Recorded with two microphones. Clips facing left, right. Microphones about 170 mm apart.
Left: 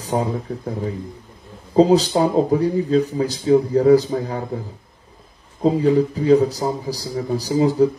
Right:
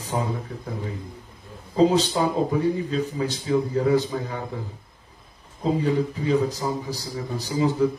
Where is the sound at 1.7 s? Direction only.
35° left (ahead or behind).